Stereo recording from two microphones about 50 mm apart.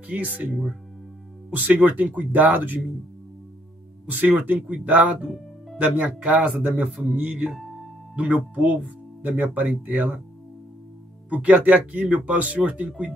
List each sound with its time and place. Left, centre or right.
0.0 s speech: right
4.0 s speech: right
7.5 s music: centre
8.2 s speech: right
11.2 s speech: right